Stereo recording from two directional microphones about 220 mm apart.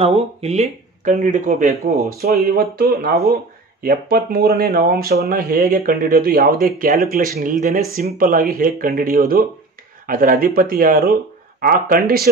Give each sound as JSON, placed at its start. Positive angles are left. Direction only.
{"t": 0.0, "sound": "speech", "side_deg": -30}
{"t": 2.2, "sound": "speech", "side_deg": -45}